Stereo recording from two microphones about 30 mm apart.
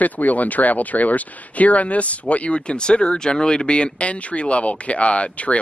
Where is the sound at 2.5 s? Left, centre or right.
Left.